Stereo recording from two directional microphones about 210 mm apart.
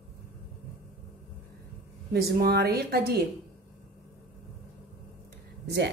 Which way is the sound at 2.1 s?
50° right (ahead or behind).